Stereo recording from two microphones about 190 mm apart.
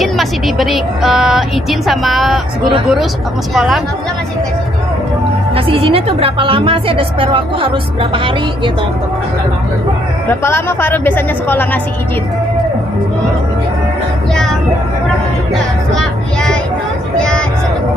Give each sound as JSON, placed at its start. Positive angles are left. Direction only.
{"t": 0.0, "sound": "speech", "side_deg": 0}
{"t": 3.5, "sound": "speech", "side_deg": 0}
{"t": 5.7, "sound": "a woman's voice", "side_deg": -30}
{"t": 10.4, "sound": "a woman's voice", "side_deg": 10}
{"t": 15.9, "sound": "a sound", "side_deg": 5}